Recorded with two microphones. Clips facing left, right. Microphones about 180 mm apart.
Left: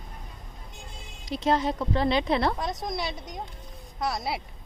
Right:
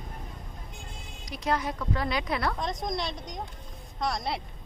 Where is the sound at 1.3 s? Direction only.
25° left (ahead or behind).